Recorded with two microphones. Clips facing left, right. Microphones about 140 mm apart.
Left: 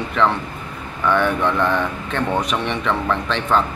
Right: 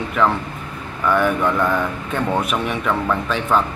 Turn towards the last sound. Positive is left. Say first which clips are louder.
# even
turn(degrees=-5)  # may be behind; listen again after turning